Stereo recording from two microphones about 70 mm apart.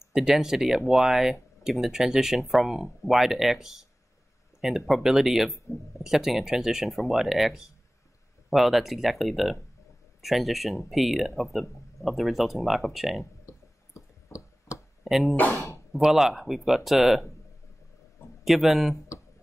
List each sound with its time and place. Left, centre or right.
0.1 s speech: centre
13.2 s clicking: left
15.0 s speech: centre
15.5 s speech: left
15.9 s speech: centre
18.4 s speech: centre